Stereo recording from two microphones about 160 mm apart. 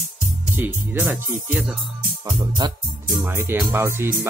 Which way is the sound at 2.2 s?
25° right (ahead or behind).